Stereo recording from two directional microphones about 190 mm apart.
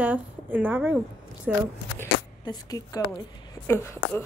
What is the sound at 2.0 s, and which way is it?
Speech, 20° left (ahead or behind).